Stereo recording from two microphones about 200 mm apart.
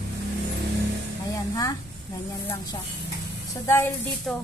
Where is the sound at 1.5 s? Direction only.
20° left (ahead or behind).